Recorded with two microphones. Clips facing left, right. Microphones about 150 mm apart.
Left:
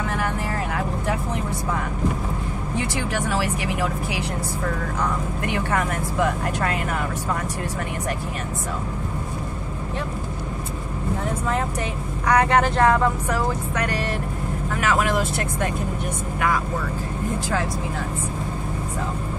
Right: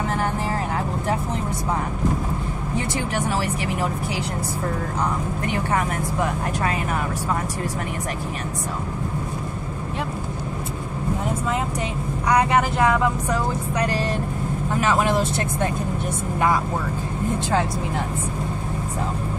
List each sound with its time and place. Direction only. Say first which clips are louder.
12.3 s speech: left 1 dB; 10° right (ahead or behind)
13.7 s speech: right 2 dB; 30° right (ahead or behind)